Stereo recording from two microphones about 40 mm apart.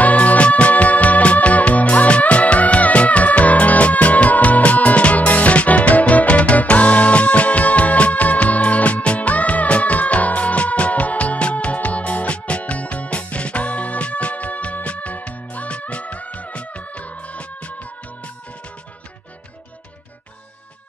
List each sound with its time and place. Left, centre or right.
0.0 s music: left